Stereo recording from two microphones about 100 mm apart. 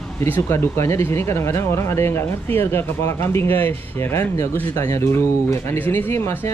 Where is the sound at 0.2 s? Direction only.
25° left (ahead or behind).